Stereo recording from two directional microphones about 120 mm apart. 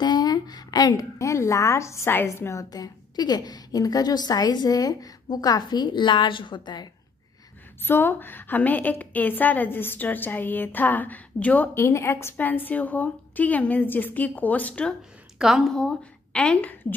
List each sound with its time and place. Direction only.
0.0 s a woman's voice: 35° left (ahead or behind)
7.8 s a woman's voice: 15° left (ahead or behind)
15.3 s a woman's voice: 5° right (ahead or behind)